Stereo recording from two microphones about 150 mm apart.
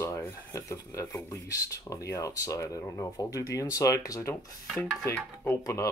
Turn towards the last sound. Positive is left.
turn(degrees=20)  # may be behind; listen again after turning